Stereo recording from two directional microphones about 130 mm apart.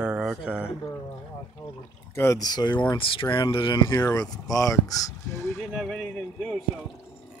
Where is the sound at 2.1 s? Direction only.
20° left (ahead or behind).